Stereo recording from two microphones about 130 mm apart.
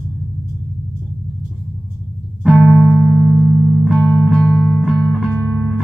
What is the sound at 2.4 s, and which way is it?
Music, 5° left (ahead or behind).